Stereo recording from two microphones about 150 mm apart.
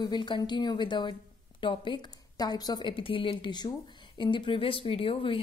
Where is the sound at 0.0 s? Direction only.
30° left (ahead or behind).